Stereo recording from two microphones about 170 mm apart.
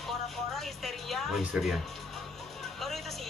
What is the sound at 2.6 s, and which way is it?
Music, centre (ahead or behind).